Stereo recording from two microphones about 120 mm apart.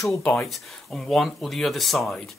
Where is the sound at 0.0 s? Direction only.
10° left (ahead or behind).